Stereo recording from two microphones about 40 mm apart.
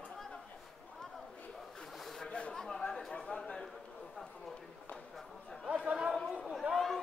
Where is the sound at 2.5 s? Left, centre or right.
Centre.